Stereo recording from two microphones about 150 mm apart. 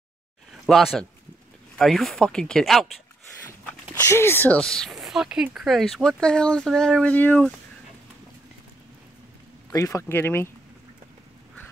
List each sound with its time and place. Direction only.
0.5 s speech: centre (ahead or behind)
4.0 s speech: 15° left (ahead or behind)
9.7 s speech: 20° left (ahead or behind)